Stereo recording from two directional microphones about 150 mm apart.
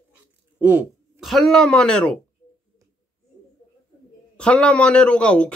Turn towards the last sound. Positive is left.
turn(degrees=5)  # may be behind; listen again after turning